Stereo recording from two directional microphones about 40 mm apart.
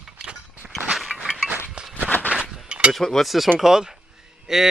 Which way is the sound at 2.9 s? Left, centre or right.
Centre.